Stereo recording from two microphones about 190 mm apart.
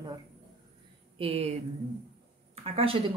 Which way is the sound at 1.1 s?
30° right (ahead or behind).